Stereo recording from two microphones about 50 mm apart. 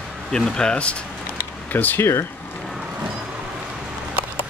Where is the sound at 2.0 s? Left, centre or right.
Left.